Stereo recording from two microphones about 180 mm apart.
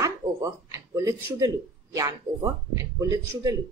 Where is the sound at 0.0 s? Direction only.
15° right (ahead or behind).